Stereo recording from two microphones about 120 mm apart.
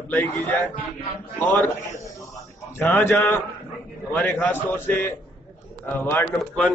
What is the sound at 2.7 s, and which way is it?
A man's voice, 15° left (ahead or behind).